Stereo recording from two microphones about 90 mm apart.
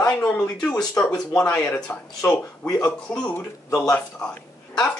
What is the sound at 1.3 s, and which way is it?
A man's voice, 15° left (ahead or behind).